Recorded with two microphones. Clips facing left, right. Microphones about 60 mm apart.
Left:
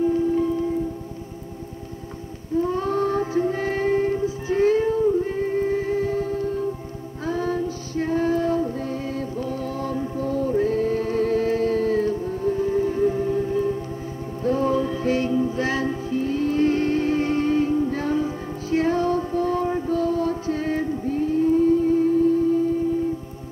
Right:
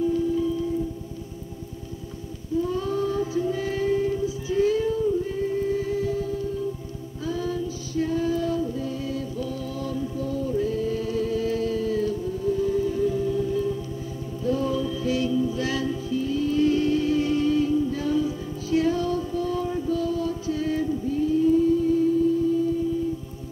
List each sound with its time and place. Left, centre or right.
0.0 s music: left
2.6 s music: left
7.2 s female singing: left
14.4 s music: left